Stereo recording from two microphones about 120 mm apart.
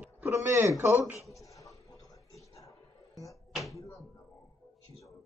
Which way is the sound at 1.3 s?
30° left (ahead or behind).